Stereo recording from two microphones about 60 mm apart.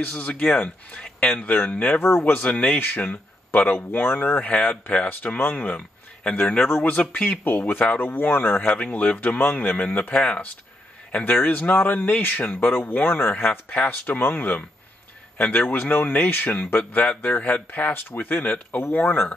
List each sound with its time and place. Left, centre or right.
0.0 s speech: left
2.0 s speech: left
2.3 s speech: left